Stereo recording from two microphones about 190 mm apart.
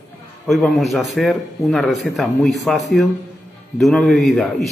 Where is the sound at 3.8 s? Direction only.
Centre (ahead or behind).